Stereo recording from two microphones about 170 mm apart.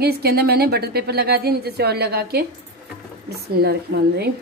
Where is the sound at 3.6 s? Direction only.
70° right (ahead or behind).